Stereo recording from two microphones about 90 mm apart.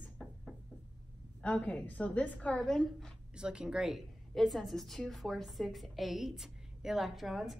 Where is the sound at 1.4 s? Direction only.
15° left (ahead or behind).